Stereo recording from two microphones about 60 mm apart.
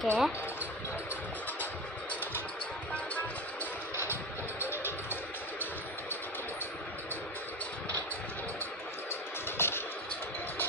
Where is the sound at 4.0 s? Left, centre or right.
Right.